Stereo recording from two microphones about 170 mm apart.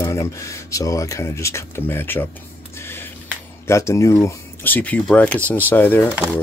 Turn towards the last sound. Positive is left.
turn(degrees=10)  # may be behind; listen again after turning